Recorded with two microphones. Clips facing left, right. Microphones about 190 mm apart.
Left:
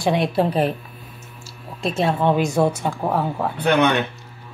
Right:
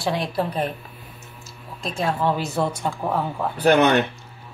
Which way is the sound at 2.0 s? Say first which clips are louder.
Left 4 dB; 25° left (ahead or behind).